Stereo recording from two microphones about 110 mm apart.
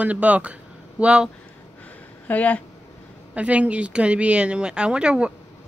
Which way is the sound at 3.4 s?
10° right (ahead or behind).